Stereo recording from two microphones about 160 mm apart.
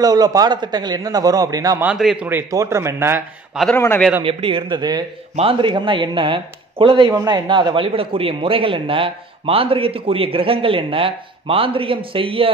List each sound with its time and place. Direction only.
0.0 s a man's voice: 25° right (ahead or behind)
1.8 s speech: 5° right (ahead or behind)
2.2 s speech: 15° right (ahead or behind)
3.7 s a man's voice: 15° left (ahead or behind)
4.2 s a man's voice: 35° right (ahead or behind)